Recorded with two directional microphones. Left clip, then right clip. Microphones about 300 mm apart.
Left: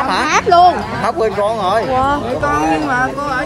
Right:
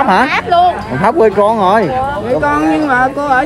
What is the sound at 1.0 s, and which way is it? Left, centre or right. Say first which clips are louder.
Speech: right 7 dB; right.